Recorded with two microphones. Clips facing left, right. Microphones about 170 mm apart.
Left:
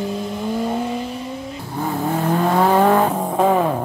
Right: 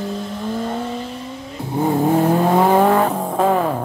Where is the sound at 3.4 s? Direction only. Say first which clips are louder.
Left 1 dB; 5° left (ahead or behind).